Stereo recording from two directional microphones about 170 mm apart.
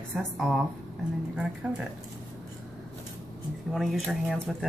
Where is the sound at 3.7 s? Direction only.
Centre (ahead or behind).